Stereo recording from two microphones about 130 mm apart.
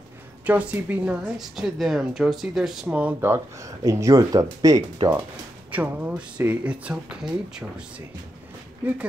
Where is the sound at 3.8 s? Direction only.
25° right (ahead or behind).